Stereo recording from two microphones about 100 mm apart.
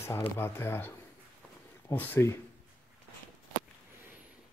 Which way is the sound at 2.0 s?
20° left (ahead or behind).